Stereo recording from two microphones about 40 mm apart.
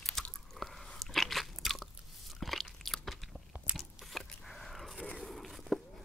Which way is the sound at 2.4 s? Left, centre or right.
Centre.